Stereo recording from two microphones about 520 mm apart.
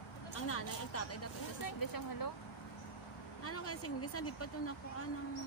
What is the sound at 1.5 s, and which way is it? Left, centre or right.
Speech, left.